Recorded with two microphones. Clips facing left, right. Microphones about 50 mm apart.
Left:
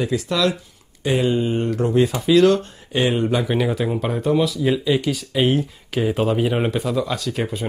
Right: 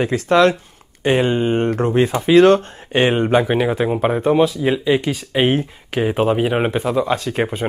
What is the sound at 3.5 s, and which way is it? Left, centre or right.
Speech, right.